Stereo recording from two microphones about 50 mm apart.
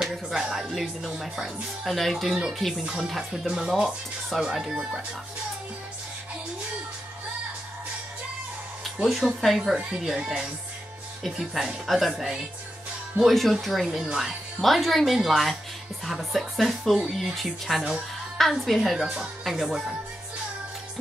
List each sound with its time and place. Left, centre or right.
0.0 s speech: centre
2.8 s speech: centre
9.0 s speech: centre
9.6 s a woman's voice: right
11.2 s speech: centre
18.8 s speech: centre